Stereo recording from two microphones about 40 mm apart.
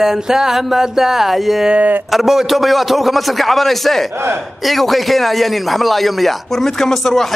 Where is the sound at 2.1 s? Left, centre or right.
Centre.